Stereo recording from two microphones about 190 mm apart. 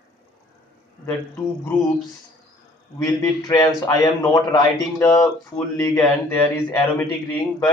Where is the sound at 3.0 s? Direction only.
20° left (ahead or behind).